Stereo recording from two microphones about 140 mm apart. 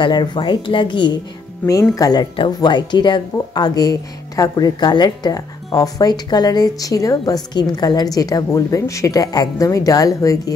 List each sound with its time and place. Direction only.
0.0 s speech: 30° left (ahead or behind)